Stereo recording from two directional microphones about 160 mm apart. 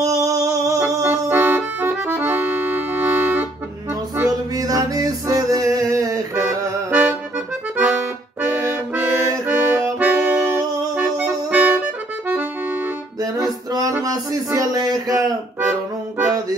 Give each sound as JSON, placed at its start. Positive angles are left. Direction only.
{"t": 0.0, "sound": "music", "side_deg": -20}
{"t": 4.2, "sound": "music", "side_deg": -20}
{"t": 7.7, "sound": "accordion", "side_deg": -10}
{"t": 9.8, "sound": "music", "side_deg": -10}
{"t": 13.2, "sound": "music", "side_deg": -25}
{"t": 14.0, "sound": "a sound", "side_deg": -25}